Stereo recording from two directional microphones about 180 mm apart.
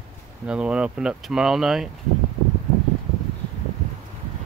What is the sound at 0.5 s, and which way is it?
Speech, 5° right (ahead or behind).